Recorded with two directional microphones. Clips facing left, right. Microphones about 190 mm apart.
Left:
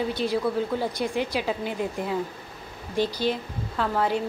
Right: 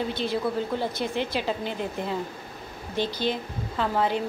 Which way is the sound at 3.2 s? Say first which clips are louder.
Left 1 dB; centre (ahead or behind).